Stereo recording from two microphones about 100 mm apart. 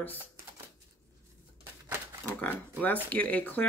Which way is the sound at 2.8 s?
15° left (ahead or behind).